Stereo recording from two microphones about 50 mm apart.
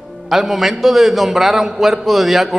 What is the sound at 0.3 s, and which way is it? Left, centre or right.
A man's voice, centre.